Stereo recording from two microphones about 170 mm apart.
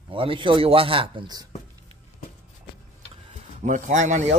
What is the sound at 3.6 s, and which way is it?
Speech, 45° right (ahead or behind).